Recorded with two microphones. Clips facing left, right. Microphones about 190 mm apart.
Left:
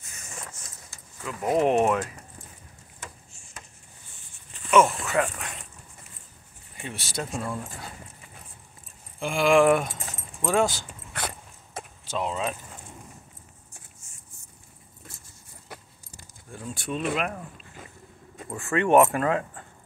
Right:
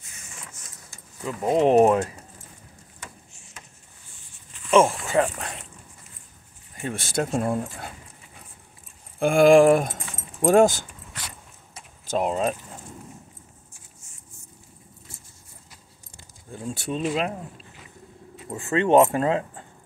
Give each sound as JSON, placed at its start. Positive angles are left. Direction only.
{"t": 0.0, "sound": "vehicle", "side_deg": 45}
{"t": 1.2, "sound": "speech", "side_deg": -25}
{"t": 4.6, "sound": "speech", "side_deg": -30}
{"t": 6.8, "sound": "speech", "side_deg": -50}
{"t": 9.2, "sound": "speech", "side_deg": -50}
{"t": 11.1, "sound": "dog", "side_deg": 55}
{"t": 12.1, "sound": "speech", "side_deg": -50}
{"t": 16.5, "sound": "speech", "side_deg": -30}
{"t": 18.5, "sound": "speech", "side_deg": -20}